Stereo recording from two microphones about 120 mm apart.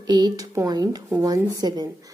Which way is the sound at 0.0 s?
35° right (ahead or behind).